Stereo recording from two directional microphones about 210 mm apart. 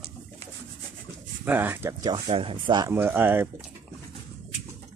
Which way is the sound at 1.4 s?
10° right (ahead or behind).